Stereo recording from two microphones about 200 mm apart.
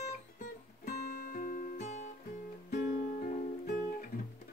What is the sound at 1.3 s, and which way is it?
Music, 45° left (ahead or behind).